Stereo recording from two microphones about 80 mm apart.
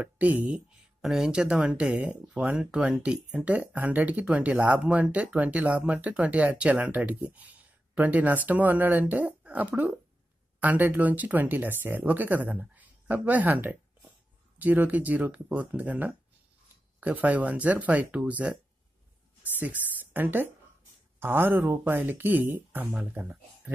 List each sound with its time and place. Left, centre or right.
0.0 s speech: centre
1.0 s speech: centre
20.0 s a sound: right
21.2 s speech: right